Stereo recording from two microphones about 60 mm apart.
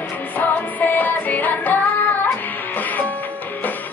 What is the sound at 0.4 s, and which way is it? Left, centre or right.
Music, left.